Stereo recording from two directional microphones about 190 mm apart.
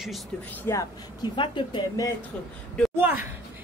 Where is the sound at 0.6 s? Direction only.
20° left (ahead or behind).